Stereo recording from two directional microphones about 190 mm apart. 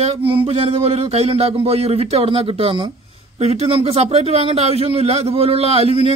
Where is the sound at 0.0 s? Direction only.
30° right (ahead or behind).